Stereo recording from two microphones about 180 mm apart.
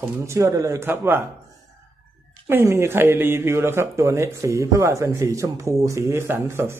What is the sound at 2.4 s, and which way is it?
Speech, 15° right (ahead or behind).